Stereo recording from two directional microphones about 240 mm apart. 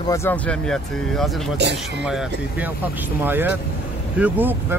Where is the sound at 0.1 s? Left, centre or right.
Centre.